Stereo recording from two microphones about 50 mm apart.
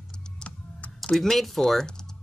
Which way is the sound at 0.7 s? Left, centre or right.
Left.